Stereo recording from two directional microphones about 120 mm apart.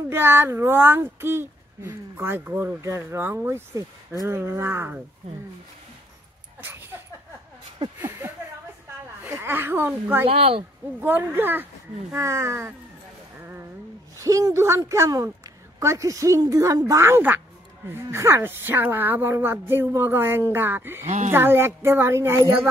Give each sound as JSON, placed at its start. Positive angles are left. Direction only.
{"t": 0.1, "sound": "speech", "side_deg": -20}
{"t": 6.6, "sound": "a sound", "side_deg": -20}
{"t": 8.0, "sound": "a sound", "side_deg": -20}
{"t": 9.2, "sound": "speech", "side_deg": -20}
{"t": 10.2, "sound": "speech", "side_deg": -50}
{"t": 11.0, "sound": "speech", "side_deg": -15}
{"t": 14.1, "sound": "a woman's voice", "side_deg": -25}